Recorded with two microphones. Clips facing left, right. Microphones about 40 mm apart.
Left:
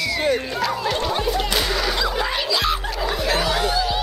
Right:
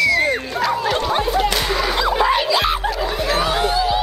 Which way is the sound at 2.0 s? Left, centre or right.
Centre.